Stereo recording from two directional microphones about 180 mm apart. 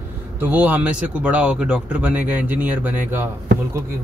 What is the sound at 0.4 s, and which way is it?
Speech, 10° right (ahead or behind).